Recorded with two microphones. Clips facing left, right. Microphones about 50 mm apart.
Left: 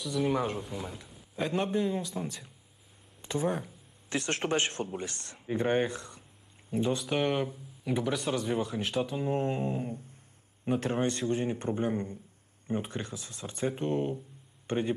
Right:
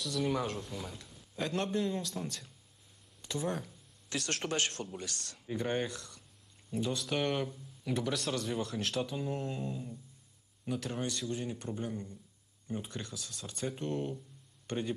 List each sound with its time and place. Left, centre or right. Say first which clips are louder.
0.0 s a man's voice: left 4 dB; centre
3.2 s a sound: left 5 dB; left
4.1 s speech: left 6 dB; left
7.0 s a man's voice: left 4 dB; centre
9.2 s a man's voice: left 7 dB; left